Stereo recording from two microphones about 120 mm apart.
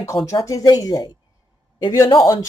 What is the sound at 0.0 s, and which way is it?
Speech, 25° left (ahead or behind).